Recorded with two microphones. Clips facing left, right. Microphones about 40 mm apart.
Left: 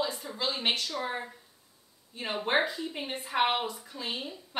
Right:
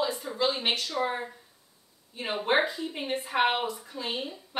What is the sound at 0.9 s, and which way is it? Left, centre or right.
A woman's voice, centre.